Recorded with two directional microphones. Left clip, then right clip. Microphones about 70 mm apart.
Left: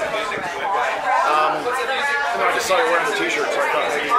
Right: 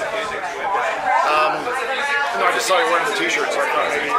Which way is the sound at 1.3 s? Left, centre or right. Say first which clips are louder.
Right 1 dB; right.